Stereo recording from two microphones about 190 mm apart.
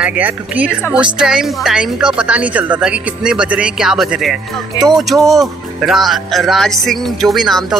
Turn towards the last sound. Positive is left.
turn(degrees=0)  # may be behind; listen again after turning